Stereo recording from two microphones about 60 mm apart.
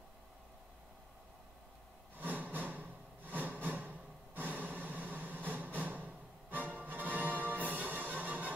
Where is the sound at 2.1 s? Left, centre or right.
Right.